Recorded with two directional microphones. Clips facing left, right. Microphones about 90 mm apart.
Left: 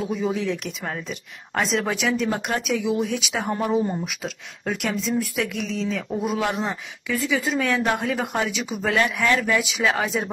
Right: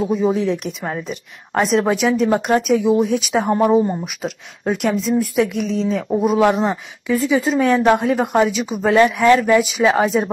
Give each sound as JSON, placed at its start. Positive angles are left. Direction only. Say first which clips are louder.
{"t": 0.0, "sound": "speech", "louder": "right 7 dB", "side_deg": -35}